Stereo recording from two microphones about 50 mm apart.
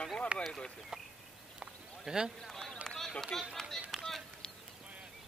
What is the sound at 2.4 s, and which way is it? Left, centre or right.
Run, centre.